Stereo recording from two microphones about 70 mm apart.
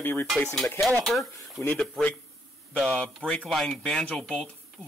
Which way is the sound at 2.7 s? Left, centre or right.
Centre.